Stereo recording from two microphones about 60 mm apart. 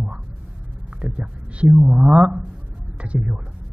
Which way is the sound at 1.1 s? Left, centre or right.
Right.